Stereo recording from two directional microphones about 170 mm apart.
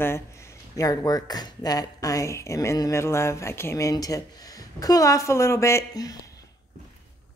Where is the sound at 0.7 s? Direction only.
20° left (ahead or behind).